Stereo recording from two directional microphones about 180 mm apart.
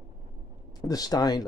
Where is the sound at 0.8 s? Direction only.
20° left (ahead or behind).